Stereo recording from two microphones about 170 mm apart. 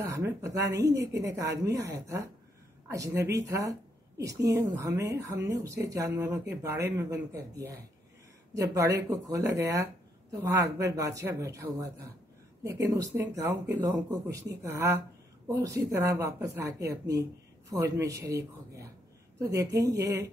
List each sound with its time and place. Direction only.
0.0 s speech: 20° right (ahead or behind)